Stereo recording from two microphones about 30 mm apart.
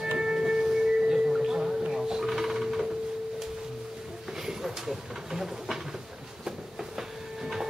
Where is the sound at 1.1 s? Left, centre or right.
Right.